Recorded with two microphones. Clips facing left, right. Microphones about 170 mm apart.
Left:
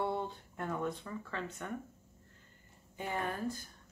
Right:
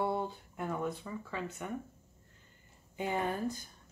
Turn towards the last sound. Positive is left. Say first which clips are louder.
# right 3 dB
turn(degrees=-20)  # may be behind; listen again after turning